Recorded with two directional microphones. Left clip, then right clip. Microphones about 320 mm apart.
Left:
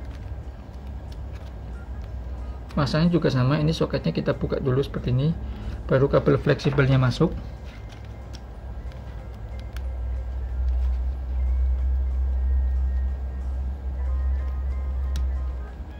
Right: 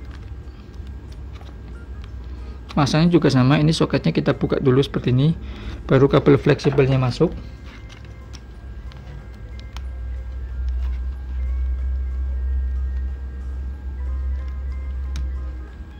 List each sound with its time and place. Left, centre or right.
2.7 s speech: right; by 7.2 s centre